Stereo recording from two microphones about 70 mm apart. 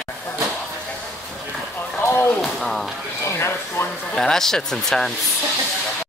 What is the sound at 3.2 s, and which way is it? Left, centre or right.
Speech, left.